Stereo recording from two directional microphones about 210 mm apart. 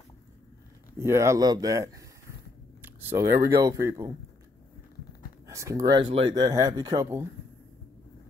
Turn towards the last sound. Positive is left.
turn(degrees=-15)  # may be behind; listen again after turning